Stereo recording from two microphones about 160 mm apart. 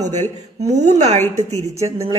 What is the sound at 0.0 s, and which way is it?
A man's voice, 45° right (ahead or behind).